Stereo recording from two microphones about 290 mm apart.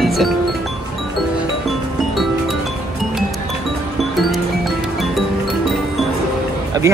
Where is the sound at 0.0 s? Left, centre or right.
Centre.